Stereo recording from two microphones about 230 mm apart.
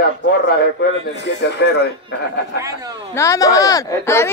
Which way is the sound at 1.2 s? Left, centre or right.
Left.